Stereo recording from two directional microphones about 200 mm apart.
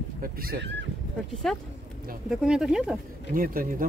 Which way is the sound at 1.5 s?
Centre (ahead or behind).